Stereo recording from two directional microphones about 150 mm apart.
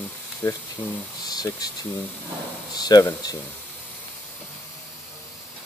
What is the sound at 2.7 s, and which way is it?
Speech, 25° left (ahead or behind).